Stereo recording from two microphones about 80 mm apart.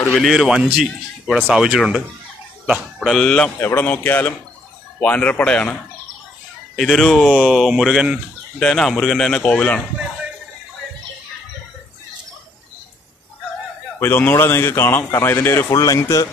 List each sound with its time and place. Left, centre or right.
0.2 s a man's voice: centre
3.1 s a man's voice: centre
3.5 s speech: left
6.8 s a man's voice: centre
7.4 s a man's voice: centre
8.5 s a man's voice: centre
13.9 s a man's voice: left
15.7 s speech: left